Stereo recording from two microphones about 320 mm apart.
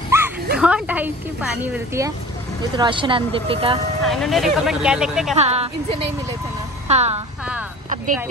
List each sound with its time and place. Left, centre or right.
0.1 s dog: centre
0.6 s a woman's voice: centre
4.0 s speech: centre
5.3 s speech: centre
6.9 s a woman's voice: centre